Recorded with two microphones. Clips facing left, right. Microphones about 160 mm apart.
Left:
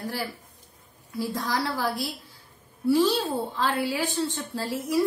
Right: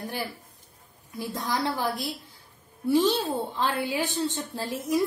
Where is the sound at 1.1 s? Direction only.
20° right (ahead or behind).